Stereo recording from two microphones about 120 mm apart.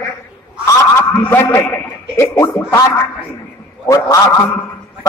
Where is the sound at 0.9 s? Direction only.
20° left (ahead or behind).